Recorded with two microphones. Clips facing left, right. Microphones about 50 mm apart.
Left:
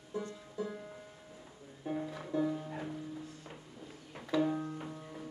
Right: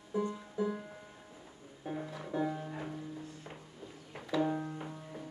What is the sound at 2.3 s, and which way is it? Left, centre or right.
Music, right.